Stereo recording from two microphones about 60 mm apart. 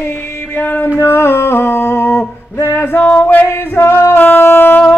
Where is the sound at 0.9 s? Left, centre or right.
Left.